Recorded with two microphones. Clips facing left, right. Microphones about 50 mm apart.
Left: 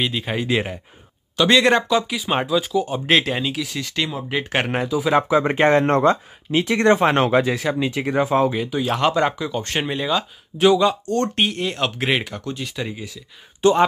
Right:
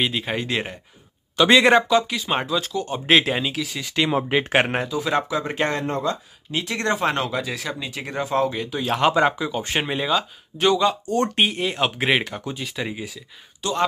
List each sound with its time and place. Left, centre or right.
0.0 s speech: centre
1.3 s speech: centre
4.7 s speech: centre
5.3 s speech: left
5.9 s speech: left
6.5 s speech: left
7.2 s speech: left
7.4 s speech: centre
11.3 s speech: centre
12.9 s speech: centre
13.6 s speech: left